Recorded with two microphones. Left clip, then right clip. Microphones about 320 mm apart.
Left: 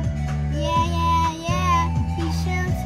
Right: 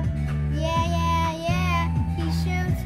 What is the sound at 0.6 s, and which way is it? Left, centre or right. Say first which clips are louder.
Child singing: left 4 dB; centre.